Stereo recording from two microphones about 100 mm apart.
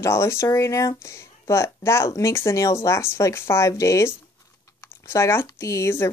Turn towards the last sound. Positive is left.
turn(degrees=25)  # may be behind; listen again after turning